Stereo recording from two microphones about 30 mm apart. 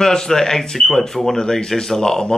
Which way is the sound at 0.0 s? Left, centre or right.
Centre.